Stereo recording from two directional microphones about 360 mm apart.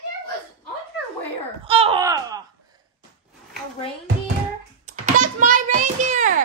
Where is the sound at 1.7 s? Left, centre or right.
Centre.